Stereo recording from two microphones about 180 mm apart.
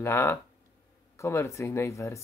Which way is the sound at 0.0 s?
15° left (ahead or behind).